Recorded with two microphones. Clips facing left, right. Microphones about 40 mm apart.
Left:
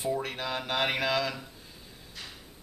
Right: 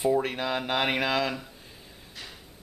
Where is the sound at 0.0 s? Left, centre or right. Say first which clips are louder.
Right 6 dB; centre.